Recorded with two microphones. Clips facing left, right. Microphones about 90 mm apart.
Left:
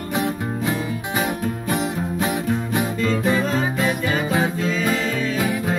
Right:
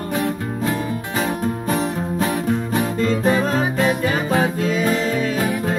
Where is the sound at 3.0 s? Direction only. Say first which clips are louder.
Right 3 dB; 40° right (ahead or behind).